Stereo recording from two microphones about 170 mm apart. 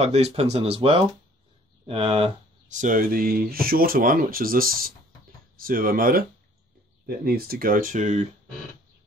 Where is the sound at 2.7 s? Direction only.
50° right (ahead or behind).